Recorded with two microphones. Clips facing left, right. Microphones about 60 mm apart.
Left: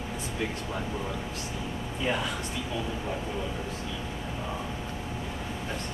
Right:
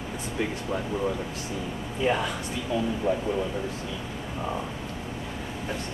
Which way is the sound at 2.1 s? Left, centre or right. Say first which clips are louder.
Right 4 dB; centre.